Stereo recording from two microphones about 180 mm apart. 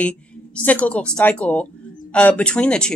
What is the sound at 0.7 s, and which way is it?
A woman's voice, 10° left (ahead or behind).